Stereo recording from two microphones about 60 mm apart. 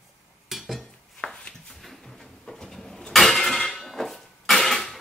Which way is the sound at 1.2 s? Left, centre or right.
Centre.